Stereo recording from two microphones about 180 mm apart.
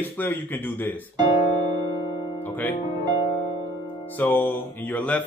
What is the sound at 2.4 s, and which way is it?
Speech, 10° left (ahead or behind).